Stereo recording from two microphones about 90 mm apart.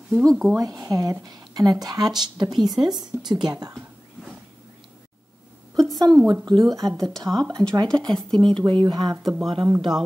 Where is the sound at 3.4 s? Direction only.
50° right (ahead or behind).